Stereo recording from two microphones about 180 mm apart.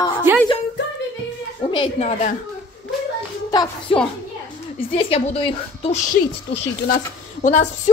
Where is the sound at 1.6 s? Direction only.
25° left (ahead or behind).